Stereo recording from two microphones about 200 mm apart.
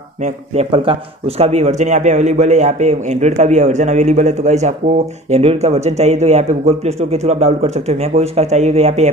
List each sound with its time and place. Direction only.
0.2 s speech: 30° right (ahead or behind)